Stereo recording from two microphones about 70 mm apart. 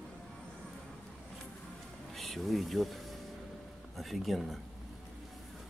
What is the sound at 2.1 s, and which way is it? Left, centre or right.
Speech, centre.